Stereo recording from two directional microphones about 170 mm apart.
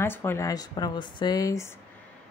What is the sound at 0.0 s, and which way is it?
Speech, 15° left (ahead or behind).